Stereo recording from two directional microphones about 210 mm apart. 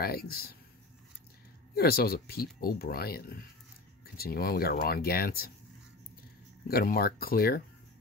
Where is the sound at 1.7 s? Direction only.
45° left (ahead or behind).